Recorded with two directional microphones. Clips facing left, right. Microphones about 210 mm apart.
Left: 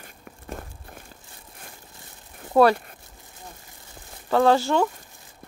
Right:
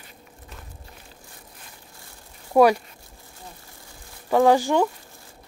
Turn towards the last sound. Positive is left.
turn(degrees=-15)  # may be behind; listen again after turning